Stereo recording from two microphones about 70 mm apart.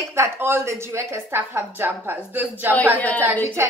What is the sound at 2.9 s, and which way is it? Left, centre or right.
Speech, left.